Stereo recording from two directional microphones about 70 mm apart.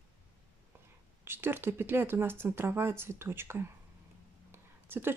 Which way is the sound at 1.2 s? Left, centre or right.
Right.